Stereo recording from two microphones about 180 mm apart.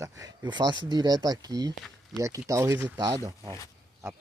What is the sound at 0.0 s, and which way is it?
Speech, 20° right (ahead or behind).